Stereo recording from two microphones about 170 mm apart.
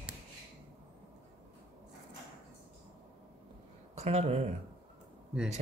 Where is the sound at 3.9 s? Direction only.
40° right (ahead or behind).